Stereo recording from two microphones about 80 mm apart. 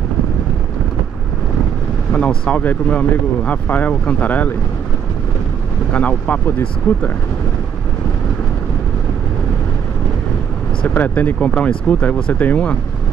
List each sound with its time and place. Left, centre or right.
2.1 s speech: centre
5.9 s speech: centre
10.9 s speech: left